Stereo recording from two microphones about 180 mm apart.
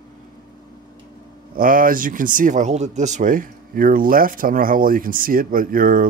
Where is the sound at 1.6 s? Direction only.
50° right (ahead or behind).